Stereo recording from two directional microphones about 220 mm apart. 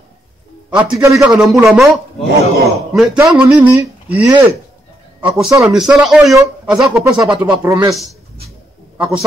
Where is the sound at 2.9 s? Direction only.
5° right (ahead or behind).